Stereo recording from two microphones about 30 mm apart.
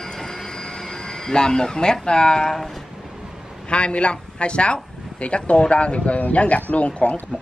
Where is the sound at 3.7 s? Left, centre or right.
Left.